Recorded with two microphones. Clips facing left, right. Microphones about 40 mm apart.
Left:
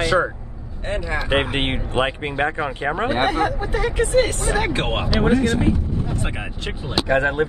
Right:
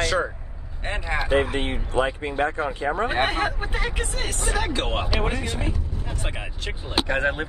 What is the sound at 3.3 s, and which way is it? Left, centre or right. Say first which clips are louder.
Speech: left 5 dB; right.